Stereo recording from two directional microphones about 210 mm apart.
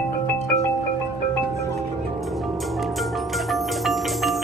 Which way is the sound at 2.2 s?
Centre (ahead or behind).